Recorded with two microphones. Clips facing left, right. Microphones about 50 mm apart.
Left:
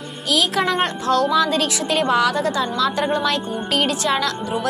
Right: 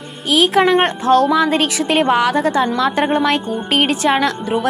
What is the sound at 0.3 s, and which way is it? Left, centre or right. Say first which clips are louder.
A woman's voice: right 7 dB; right.